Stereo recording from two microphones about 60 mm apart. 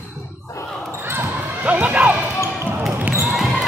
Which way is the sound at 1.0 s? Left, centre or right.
Right.